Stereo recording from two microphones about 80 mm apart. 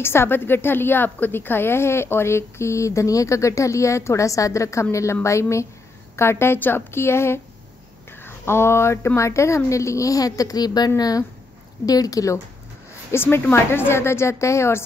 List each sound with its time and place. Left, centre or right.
0.0 s a woman's voice: left
13.1 s a woman's voice: left